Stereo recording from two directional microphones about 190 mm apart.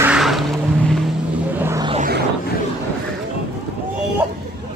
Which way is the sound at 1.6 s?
15° right (ahead or behind).